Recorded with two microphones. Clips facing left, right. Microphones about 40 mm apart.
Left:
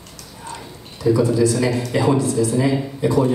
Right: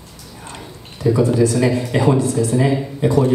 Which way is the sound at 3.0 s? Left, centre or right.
Right.